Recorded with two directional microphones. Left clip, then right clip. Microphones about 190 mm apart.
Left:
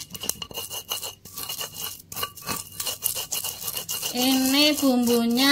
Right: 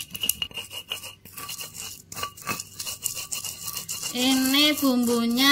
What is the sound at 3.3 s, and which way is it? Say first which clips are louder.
Toothbrush: left 2 dB; 30° left (ahead or behind).